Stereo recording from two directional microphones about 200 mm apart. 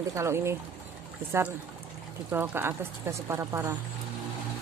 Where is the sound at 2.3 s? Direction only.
10° right (ahead or behind).